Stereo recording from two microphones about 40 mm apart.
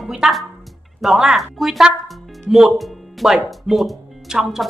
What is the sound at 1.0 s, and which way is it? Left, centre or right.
Speech, centre.